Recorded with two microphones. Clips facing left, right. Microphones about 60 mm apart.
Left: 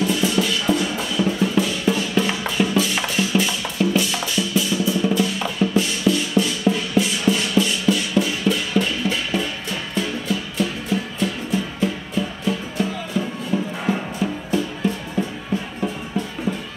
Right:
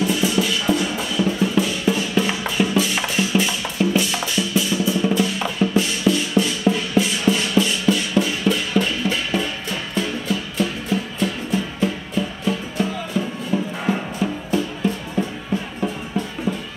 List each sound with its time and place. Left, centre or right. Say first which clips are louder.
0.0 s drum: even; centre
1.4 s music: even; centre; by 11.9 s right